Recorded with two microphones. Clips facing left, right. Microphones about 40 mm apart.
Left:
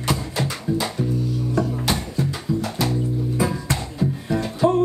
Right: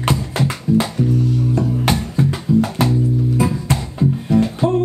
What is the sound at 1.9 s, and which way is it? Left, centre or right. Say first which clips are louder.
Music: right 5 dB; right.